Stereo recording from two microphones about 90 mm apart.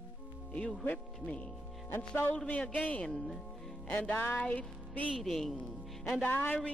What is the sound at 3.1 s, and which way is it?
Speech, 5° left (ahead or behind).